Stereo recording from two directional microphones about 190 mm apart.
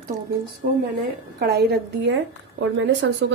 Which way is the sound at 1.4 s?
55° right (ahead or behind).